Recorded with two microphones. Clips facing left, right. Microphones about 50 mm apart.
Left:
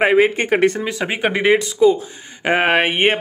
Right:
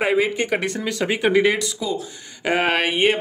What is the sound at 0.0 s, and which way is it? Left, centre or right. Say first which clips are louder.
Speech: left 5 dB; left.